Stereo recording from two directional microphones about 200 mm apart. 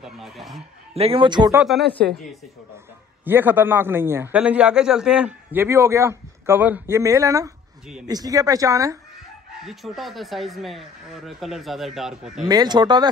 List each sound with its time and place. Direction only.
0.0 s speech: centre (ahead or behind)
0.9 s a man's voice: 30° right (ahead or behind)
1.6 s speech: centre (ahead or behind)
3.3 s a man's voice: 10° right (ahead or behind)
9.7 s speech: centre (ahead or behind)
12.4 s a man's voice: 20° right (ahead or behind)